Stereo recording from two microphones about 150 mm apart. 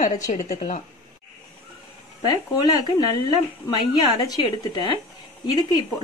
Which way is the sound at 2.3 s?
30° left (ahead or behind).